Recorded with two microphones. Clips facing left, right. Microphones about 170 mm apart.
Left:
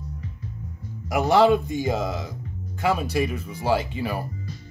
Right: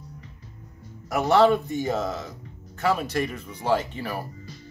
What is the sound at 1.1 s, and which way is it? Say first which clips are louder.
Speech: left 1 dB; 10° left (ahead or behind).